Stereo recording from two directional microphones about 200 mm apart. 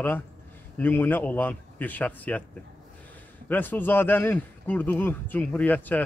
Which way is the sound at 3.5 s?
10° left (ahead or behind).